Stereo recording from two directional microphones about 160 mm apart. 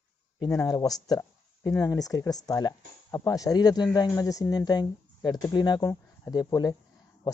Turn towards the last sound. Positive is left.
turn(degrees=25)  # may be behind; listen again after turning